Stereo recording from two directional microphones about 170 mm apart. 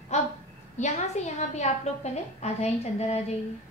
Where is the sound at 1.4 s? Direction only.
40° left (ahead or behind).